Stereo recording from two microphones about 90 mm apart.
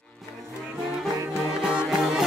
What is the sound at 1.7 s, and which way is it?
Music, 10° right (ahead or behind).